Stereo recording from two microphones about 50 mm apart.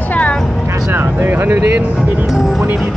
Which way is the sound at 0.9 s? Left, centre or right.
Right.